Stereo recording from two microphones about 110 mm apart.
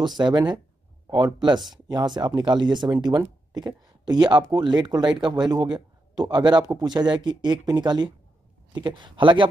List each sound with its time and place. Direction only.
0.2 s speech: 40° right (ahead or behind)